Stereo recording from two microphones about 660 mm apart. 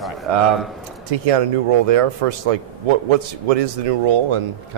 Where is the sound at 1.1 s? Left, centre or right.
Right.